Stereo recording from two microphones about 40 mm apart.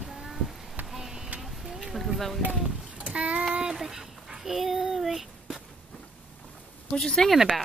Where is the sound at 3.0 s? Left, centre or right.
Right.